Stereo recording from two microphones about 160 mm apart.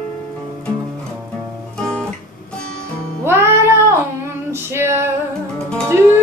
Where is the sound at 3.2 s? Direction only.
15° right (ahead or behind).